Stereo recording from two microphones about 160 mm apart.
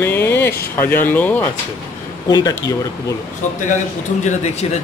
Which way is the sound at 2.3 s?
20° left (ahead or behind).